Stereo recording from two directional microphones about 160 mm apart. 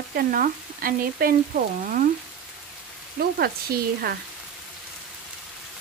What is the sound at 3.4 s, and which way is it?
Frying, 70° right (ahead or behind).